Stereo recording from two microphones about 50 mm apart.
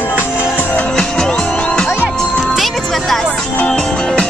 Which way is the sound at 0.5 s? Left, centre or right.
Left.